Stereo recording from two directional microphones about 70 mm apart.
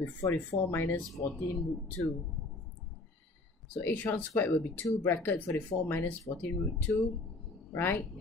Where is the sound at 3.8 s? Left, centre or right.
Left.